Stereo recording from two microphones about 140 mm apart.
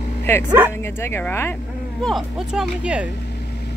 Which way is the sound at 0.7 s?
15° left (ahead or behind).